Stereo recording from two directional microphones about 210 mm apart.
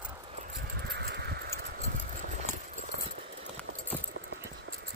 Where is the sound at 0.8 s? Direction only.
50° right (ahead or behind).